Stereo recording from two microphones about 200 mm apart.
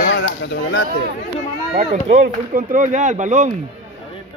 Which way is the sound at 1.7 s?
35° right (ahead or behind).